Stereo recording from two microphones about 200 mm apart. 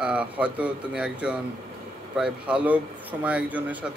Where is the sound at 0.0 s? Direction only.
5° right (ahead or behind).